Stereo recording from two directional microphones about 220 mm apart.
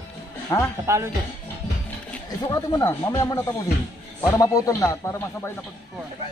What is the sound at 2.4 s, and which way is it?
Speech, 15° left (ahead or behind).